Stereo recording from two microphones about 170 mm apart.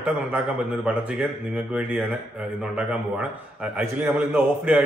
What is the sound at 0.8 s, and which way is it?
A man's voice, 5° right (ahead or behind).